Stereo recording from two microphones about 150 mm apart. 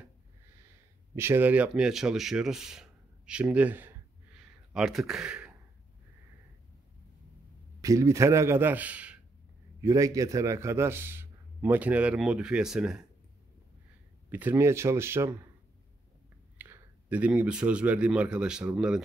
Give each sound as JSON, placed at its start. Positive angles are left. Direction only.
{"t": 1.1, "sound": "a man's voice", "side_deg": -15}
{"t": 7.8, "sound": "a man's voice", "side_deg": -20}
{"t": 9.8, "sound": "a man's voice", "side_deg": -20}
{"t": 14.3, "sound": "a man's voice", "side_deg": -15}
{"t": 16.5, "sound": "speech", "side_deg": -10}